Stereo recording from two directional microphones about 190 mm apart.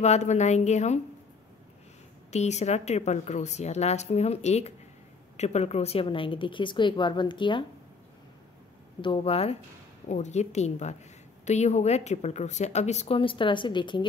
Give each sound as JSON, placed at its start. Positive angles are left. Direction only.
{"t": 0.0, "sound": "a woman's voice", "side_deg": 35}
{"t": 2.3, "sound": "a woman's voice", "side_deg": 35}
{"t": 9.0, "sound": "a woman's voice", "side_deg": 30}